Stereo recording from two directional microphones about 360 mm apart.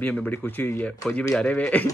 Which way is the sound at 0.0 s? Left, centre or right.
Centre.